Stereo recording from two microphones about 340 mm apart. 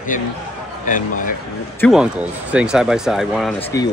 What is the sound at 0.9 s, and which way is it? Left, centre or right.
Speech, left.